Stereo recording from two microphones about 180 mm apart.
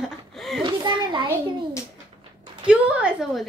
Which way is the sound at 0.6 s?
25° right (ahead or behind).